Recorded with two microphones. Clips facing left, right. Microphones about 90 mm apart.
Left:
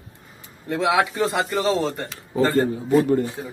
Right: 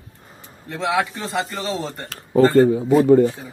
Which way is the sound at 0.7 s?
5° left (ahead or behind).